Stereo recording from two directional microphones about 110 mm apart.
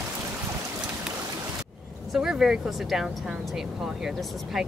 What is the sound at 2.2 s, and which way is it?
Speech, 5° right (ahead or behind).